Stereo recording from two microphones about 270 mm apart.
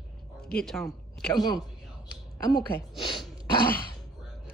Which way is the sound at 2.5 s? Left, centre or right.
Centre.